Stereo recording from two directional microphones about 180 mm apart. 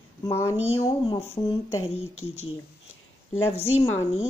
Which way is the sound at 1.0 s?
30° left (ahead or behind).